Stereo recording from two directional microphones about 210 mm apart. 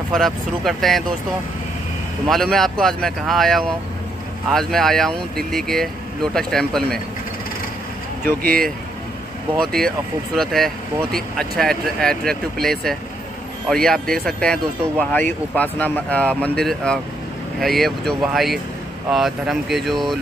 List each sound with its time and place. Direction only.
0.1 s speech: centre (ahead or behind)
2.2 s speech: centre (ahead or behind)
8.4 s speech: 45° right (ahead or behind)
9.7 s speech: centre (ahead or behind)